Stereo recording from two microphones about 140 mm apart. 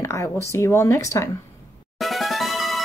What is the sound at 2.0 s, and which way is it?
Music, centre (ahead or behind).